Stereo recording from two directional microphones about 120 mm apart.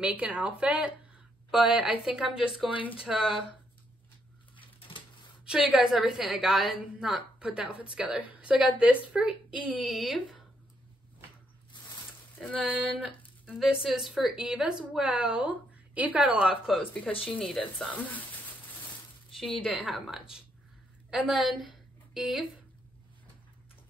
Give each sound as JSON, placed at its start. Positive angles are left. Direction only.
{"t": 0.0, "sound": "a woman's voice", "side_deg": -10}
{"t": 4.6, "sound": "bird", "side_deg": 45}
{"t": 5.4, "sound": "a woman's voice", "side_deg": -5}
{"t": 12.4, "sound": "speech", "side_deg": 10}
{"t": 12.7, "sound": "a woman's voice", "side_deg": -10}
{"t": 17.2, "sound": "speech", "side_deg": 5}
{"t": 19.7, "sound": "a woman's voice", "side_deg": -5}